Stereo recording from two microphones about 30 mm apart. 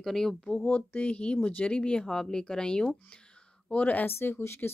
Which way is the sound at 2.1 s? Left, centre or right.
Left.